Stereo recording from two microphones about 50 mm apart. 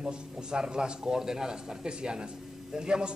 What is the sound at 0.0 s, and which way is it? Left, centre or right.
A man's voice, centre.